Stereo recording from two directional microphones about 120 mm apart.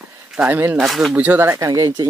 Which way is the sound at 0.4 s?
15° right (ahead or behind).